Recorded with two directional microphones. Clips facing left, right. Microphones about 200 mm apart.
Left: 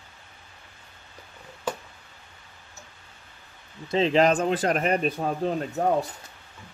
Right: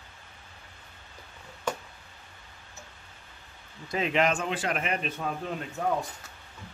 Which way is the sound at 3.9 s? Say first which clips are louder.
Left 6 dB; 30° left (ahead or behind).